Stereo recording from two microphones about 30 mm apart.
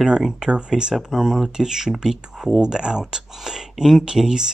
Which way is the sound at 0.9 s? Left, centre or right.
Centre.